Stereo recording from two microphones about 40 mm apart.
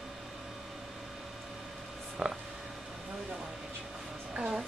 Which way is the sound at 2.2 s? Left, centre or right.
Centre.